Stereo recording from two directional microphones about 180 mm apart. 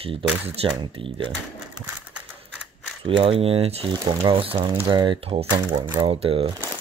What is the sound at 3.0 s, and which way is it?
Speech, 30° right (ahead or behind).